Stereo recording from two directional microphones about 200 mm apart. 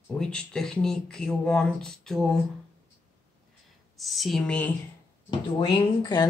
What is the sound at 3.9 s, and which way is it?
Speech, centre (ahead or behind).